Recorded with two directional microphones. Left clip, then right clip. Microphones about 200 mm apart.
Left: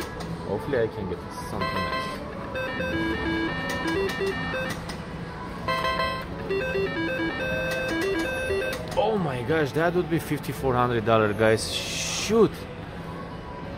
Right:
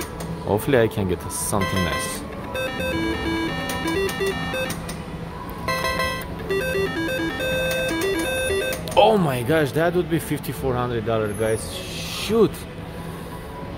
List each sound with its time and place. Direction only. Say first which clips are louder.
1.6 s speech: right 2 dB; 25° right (ahead or behind)
2.6 s music: right 3 dB; 25° right (ahead or behind)
5.7 s music: right 2 dB; 25° right (ahead or behind)
8.9 s music: right 9 dB; 45° right (ahead or behind)
9.2 s speech: right 5 dB; 25° right (ahead or behind)
9.6 s speech: right 2 dB; 10° right (ahead or behind)
11.1 s speech: left 2 dB; 20° left (ahead or behind)